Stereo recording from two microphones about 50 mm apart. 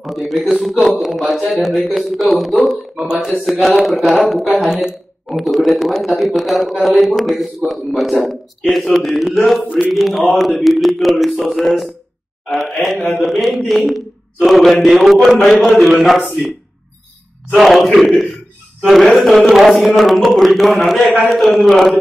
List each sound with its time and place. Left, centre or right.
0.0 s a man's voice: centre
9.6 s speech: centre
9.8 s a man's voice: centre
17.6 s a man's voice: centre